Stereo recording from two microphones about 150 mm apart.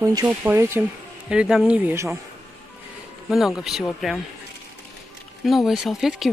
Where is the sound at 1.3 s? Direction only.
5° right (ahead or behind).